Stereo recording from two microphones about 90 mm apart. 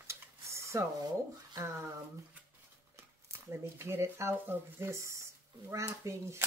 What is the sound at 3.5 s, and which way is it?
Speech, 30° right (ahead or behind).